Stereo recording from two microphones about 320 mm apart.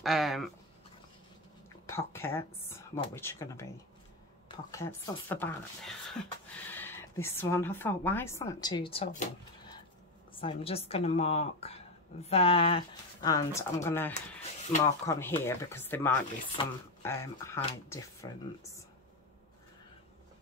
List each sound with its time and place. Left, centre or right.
0.0 s a sound: centre
1.9 s speech: centre
10.4 s speech: centre